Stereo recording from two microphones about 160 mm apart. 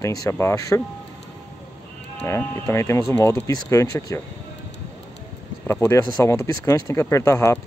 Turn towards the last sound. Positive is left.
turn(degrees=20)  # may be behind; listen again after turning